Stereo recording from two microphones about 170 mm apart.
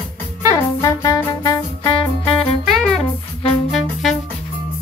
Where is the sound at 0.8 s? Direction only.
15° left (ahead or behind).